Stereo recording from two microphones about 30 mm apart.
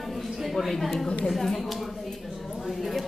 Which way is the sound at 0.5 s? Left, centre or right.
Centre.